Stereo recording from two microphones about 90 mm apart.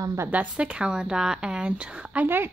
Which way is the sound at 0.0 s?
35° right (ahead or behind).